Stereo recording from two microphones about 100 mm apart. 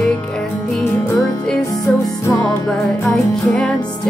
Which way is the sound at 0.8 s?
25° left (ahead or behind).